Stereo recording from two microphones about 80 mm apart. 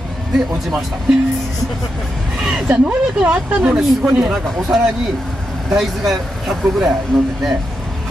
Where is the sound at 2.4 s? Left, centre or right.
Centre.